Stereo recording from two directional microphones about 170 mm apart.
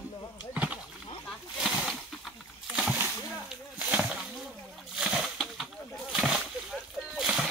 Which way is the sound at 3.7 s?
10° right (ahead or behind).